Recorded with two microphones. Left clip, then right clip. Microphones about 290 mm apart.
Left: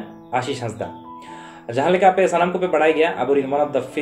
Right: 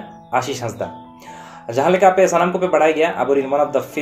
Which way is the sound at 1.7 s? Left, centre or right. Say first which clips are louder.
Right 2 dB; right.